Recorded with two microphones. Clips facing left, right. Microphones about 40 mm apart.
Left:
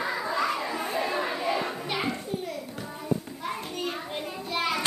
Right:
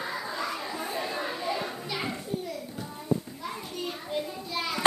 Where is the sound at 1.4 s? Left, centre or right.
Left.